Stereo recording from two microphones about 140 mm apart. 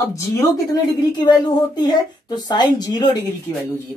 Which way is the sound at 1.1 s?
30° left (ahead or behind).